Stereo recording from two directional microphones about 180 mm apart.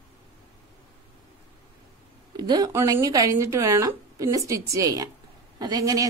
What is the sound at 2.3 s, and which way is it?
A woman's voice, 25° right (ahead or behind).